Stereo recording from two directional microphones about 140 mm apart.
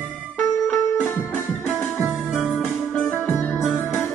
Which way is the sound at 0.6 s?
15° left (ahead or behind).